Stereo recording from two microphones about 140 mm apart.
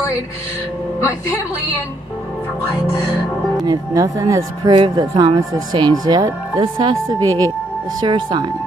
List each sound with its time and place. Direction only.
3.6 s speech: 25° right (ahead or behind)
4.7 s speech: 35° right (ahead or behind)